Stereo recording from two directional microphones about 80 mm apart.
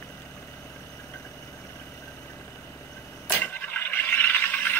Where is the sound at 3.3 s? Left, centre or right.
Left.